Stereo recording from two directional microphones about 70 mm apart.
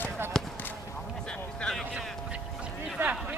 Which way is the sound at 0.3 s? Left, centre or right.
Centre.